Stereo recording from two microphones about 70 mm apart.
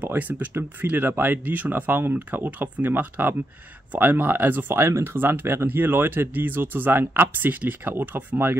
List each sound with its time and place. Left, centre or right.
0.0 s speech: right